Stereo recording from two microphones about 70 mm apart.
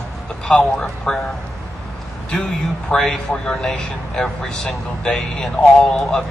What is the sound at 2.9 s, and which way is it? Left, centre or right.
Speech, centre.